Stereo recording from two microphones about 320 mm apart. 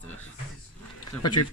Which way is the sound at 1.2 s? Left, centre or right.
Left.